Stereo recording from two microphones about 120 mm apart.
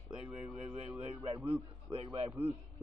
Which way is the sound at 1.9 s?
50° right (ahead or behind).